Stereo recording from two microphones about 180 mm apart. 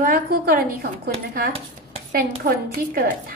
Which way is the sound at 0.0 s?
55° right (ahead or behind).